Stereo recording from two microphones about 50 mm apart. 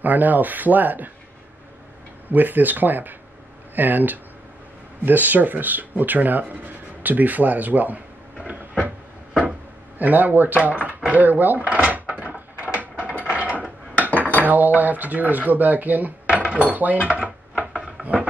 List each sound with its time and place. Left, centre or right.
0.0 s speech: right
2.3 s speech: right
8.5 s cupboard open or close: right
9.9 s speech: right
11.1 s drawer open or close: right
14.4 s speech: right
17.6 s a sound: right